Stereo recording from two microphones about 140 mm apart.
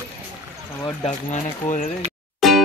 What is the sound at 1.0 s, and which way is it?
Speech, 60° left (ahead or behind).